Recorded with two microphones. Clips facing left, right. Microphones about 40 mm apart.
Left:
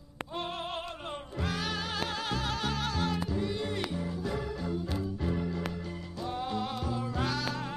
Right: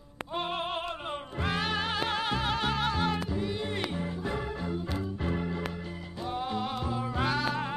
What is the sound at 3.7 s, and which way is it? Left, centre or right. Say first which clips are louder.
Music: right 1 dB; right.